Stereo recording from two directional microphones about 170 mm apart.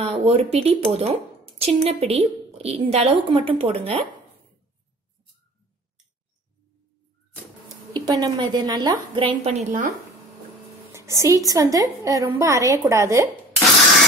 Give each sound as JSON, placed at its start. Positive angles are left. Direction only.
{"t": 0.0, "sound": "a woman's voice", "side_deg": -35}
{"t": 7.9, "sound": "a woman's voice", "side_deg": -25}
{"t": 9.4, "sound": "a woman's voice", "side_deg": -40}
{"t": 10.9, "sound": "a woman's voice", "side_deg": -15}